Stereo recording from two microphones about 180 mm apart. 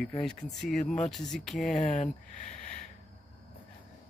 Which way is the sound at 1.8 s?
40° left (ahead or behind).